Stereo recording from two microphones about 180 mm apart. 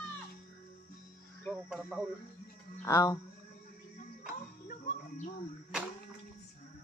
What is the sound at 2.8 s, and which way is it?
Speech, 20° left (ahead or behind).